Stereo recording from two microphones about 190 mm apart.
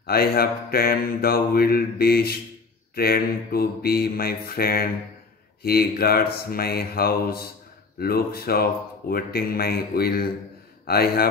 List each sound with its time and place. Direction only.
0.0 s mantra: 55° left (ahead or behind)